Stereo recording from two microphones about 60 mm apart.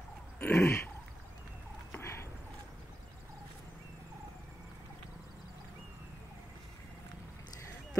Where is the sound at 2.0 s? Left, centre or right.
Left.